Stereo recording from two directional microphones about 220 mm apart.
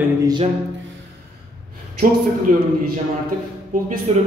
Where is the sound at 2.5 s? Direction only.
35° right (ahead or behind).